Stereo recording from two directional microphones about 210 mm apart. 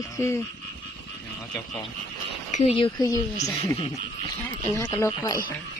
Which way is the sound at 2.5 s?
30° left (ahead or behind).